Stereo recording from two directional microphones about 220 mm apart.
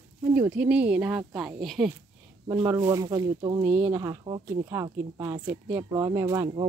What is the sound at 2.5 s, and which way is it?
Speech, 15° right (ahead or behind).